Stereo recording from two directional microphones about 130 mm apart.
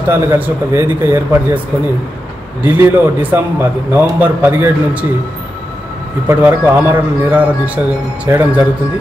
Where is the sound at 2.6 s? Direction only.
15° right (ahead or behind).